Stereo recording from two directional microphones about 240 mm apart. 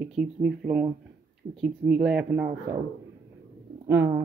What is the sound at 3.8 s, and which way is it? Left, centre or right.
Speech, centre.